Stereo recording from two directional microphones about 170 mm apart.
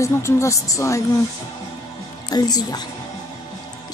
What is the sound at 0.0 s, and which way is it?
Speech, 15° left (ahead or behind).